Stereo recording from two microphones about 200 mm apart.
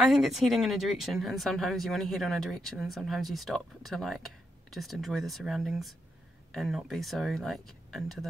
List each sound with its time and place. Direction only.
0.1 s speech: centre (ahead or behind)